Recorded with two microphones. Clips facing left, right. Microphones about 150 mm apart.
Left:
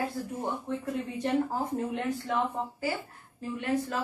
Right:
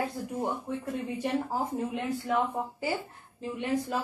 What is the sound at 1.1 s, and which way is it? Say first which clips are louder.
A woman's voice: left 2 dB; 10° right (ahead or behind).